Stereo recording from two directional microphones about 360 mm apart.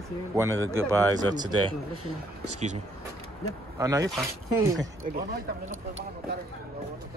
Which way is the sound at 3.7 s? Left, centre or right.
Centre.